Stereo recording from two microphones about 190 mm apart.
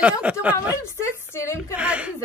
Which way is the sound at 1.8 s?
5° right (ahead or behind).